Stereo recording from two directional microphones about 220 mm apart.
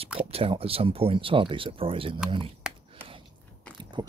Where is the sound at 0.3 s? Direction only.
25° right (ahead or behind).